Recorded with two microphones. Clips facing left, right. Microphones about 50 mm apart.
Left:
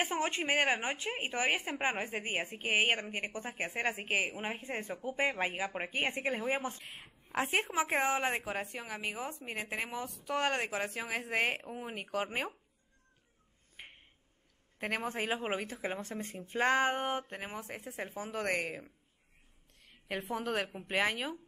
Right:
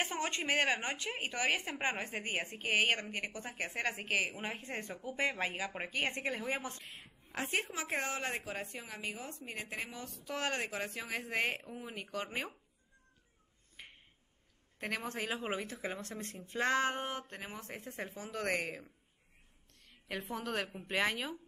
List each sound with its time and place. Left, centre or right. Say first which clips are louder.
0.0 s a woman's voice: left 3 dB; centre
10.0 s a woman's voice: left 5 dB; centre
13.8 s a sound: left 2 dB; centre
14.8 s a woman's voice: left 3 dB; centre
17.6 s a woman's voice: left 2 dB; centre